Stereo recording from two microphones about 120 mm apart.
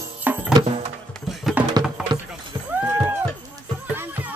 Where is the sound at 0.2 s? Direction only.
15° right (ahead or behind).